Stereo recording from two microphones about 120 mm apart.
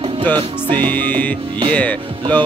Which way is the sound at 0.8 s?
15° left (ahead or behind).